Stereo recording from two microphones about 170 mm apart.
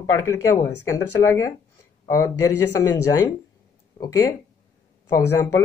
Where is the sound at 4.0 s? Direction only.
20° left (ahead or behind).